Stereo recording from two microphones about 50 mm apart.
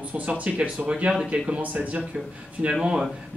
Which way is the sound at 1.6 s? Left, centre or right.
Right.